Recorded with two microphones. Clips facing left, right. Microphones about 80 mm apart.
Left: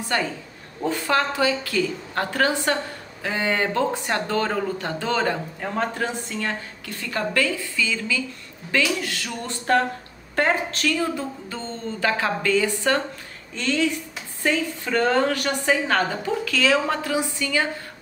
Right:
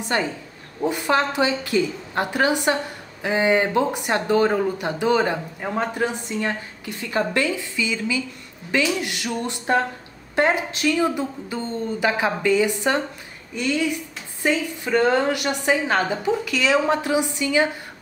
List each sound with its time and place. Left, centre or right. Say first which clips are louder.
0.0 s a woman's voice: right 1 dB; right